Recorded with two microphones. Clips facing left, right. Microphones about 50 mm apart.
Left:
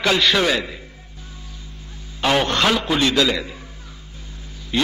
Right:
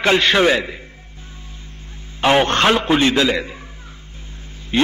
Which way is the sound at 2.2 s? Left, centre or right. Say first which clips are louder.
Right 4 dB; right.